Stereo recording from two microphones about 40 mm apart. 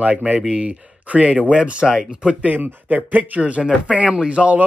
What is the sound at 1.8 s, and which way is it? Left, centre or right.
Speech, centre.